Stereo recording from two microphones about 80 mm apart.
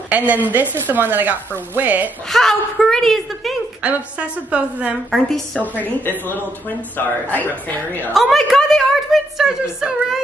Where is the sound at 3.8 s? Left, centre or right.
Centre.